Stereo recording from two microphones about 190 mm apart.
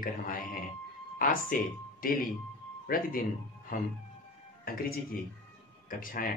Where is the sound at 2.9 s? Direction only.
50° left (ahead or behind).